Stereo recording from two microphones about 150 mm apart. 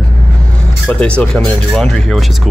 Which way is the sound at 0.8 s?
10° left (ahead or behind).